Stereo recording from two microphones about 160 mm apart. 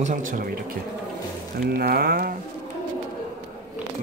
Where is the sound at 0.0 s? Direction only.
55° right (ahead or behind).